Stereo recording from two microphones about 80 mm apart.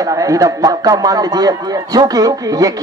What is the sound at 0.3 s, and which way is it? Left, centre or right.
Speech, right.